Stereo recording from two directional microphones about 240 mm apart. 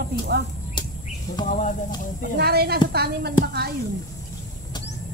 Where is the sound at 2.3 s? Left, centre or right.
Right.